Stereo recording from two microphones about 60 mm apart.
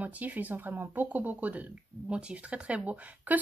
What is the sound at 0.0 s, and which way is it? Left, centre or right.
Speech, right.